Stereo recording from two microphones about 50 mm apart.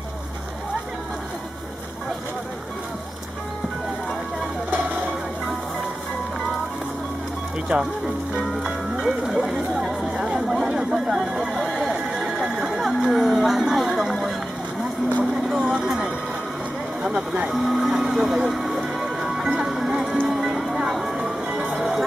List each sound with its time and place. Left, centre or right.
7.7 s speech: right
8.5 s music: centre
10.1 s chatter: centre
10.8 s a sound: centre
15.3 s vehicle: centre
17.0 s speech: centre
17.5 s music: centre
20.9 s a sound: centre
21.5 s music: centre